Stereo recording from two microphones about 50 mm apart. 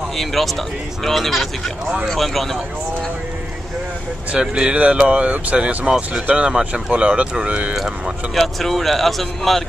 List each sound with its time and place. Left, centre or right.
0.2 s speech: centre
4.3 s speech: centre
8.4 s speech: centre